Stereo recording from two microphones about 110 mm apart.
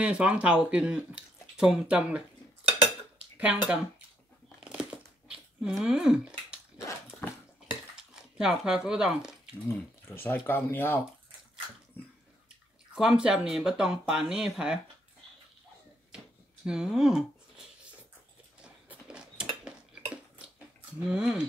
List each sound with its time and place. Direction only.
0.0 s speech: 10° right (ahead or behind)
3.3 s speech: 10° right (ahead or behind)
4.6 s a sound: 10° right (ahead or behind)
7.9 s a sound: 5° right (ahead or behind)
9.7 s speech: 20° left (ahead or behind)
12.0 s bathtub: 15° left (ahead or behind)
12.9 s speech: 5° right (ahead or behind)
16.6 s speech: 5° right (ahead or behind)
18.6 s cutlery: 10° right (ahead or behind)
21.1 s speech: 5° right (ahead or behind)